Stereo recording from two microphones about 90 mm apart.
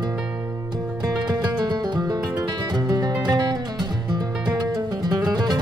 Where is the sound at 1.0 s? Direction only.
45° right (ahead or behind).